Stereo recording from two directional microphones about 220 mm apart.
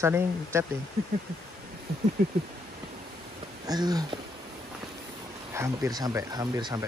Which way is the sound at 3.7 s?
15° right (ahead or behind).